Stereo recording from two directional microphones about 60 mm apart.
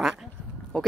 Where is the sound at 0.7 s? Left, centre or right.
Centre.